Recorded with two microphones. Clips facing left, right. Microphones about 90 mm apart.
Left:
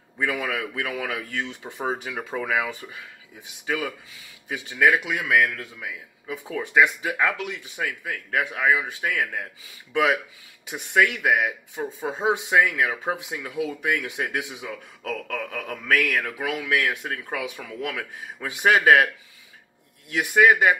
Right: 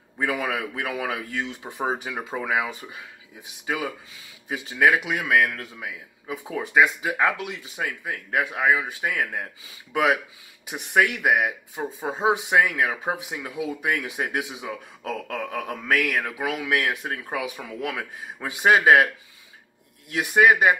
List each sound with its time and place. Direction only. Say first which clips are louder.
0.2 s speech: right 1 dB; 30° right (ahead or behind)
1.4 s speech: right 1 dB; 15° right (ahead or behind)
6.5 s speech: even; 15° right (ahead or behind)
7.2 s speech: right 1 dB; 30° right (ahead or behind)
10.7 s speech: even; 20° right (ahead or behind)
11.7 s speech: left 1 dB; 5° right (ahead or behind)
12.1 s speech: right 1 dB; 20° right (ahead or behind)
12.9 s speech: even; 10° right (ahead or behind)
13.8 s speech: even; 20° right (ahead or behind)
16.3 s speech: even; 15° right (ahead or behind)
20.1 s speech: even; 35° right (ahead or behind)
20.4 s speech: even; 20° right (ahead or behind)